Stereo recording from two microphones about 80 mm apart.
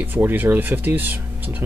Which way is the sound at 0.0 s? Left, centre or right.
Right.